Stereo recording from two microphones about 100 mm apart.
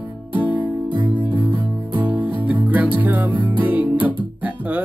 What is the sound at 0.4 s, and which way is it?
Music, 15° right (ahead or behind).